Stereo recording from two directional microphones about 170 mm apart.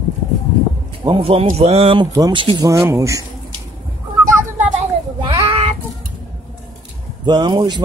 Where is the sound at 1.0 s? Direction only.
30° right (ahead or behind).